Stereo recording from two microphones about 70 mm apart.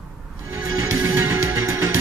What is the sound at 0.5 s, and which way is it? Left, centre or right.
Music, right.